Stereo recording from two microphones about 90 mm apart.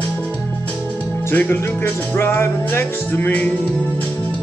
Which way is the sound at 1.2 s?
25° left (ahead or behind).